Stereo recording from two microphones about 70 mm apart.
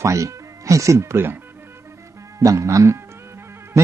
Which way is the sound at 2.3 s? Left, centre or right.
Right.